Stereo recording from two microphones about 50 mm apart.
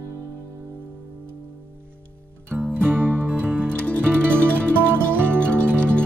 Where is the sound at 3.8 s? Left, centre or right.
Left.